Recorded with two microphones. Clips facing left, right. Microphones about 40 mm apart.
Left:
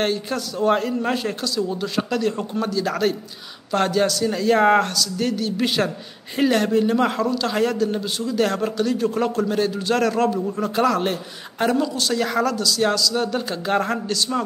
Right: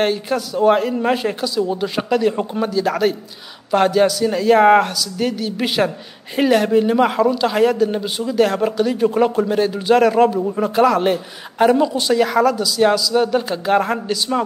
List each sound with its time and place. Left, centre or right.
0.0 s speech: centre
2.3 s a man's voice: right
2.7 s speech: centre
12.3 s speech: centre